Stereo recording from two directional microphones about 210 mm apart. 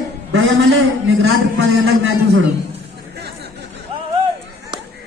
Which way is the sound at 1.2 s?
60° right (ahead or behind).